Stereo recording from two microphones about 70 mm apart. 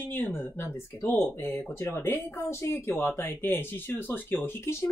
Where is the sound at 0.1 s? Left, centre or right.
Left.